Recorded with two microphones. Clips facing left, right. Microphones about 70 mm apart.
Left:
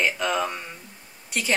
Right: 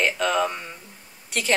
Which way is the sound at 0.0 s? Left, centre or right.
Centre.